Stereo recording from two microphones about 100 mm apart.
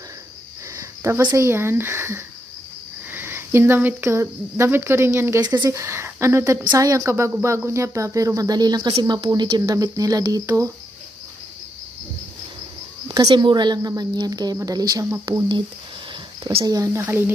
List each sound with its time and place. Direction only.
0.7 s a sound: 30° right (ahead or behind)
1.3 s speech: 25° right (ahead or behind)
6.6 s speech: 40° right (ahead or behind)
9.6 s speech: 35° right (ahead or behind)
13.1 s speech: 40° right (ahead or behind)
16.6 s speech: 35° right (ahead or behind)
17.0 s speech: 25° right (ahead or behind)